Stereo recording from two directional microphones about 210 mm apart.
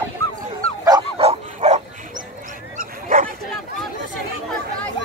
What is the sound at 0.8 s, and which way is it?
Bow-wow, 25° right (ahead or behind).